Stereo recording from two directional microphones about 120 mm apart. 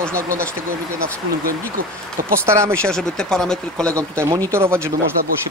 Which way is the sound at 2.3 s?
20° right (ahead or behind).